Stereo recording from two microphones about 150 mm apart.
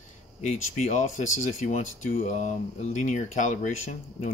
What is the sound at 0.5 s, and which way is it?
Speech, 50° left (ahead or behind).